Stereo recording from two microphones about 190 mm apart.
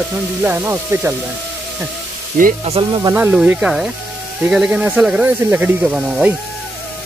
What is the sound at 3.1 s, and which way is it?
Speech, 5° right (ahead or behind).